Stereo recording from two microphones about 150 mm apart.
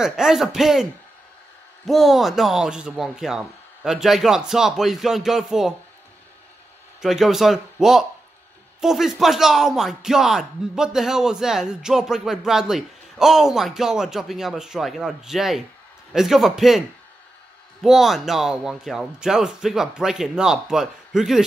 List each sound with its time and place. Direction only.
0.0 s speech: 5° right (ahead or behind)
1.9 s speech: centre (ahead or behind)
7.0 s speech: centre (ahead or behind)
17.8 s speech: centre (ahead or behind)